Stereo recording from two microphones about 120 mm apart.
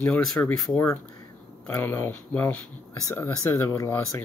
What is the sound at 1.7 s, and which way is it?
Speech, 15° left (ahead or behind).